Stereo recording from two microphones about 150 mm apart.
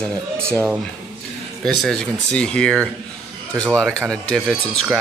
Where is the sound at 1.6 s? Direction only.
5° left (ahead or behind).